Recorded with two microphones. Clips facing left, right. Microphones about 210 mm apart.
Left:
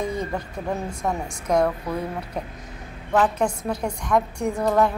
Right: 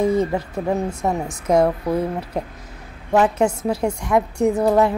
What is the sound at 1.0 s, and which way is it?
Speech, 25° right (ahead or behind).